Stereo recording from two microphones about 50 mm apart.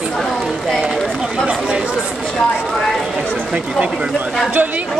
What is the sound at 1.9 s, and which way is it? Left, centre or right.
A woman's voice, centre.